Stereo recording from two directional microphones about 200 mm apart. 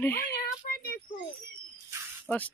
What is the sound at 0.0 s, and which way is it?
Speech, 10° left (ahead or behind).